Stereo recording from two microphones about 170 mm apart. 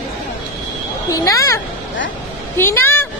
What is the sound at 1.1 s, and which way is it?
A child's voice, 20° left (ahead or behind).